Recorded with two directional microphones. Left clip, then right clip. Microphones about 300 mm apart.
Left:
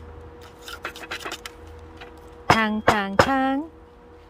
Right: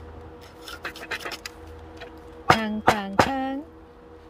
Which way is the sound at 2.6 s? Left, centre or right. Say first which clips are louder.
Left 2 dB; centre.